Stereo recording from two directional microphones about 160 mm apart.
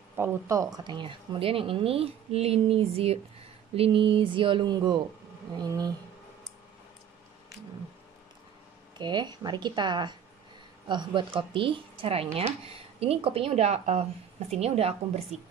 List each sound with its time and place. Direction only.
0.1 s speech: 15° right (ahead or behind)
8.9 s speech: 30° right (ahead or behind)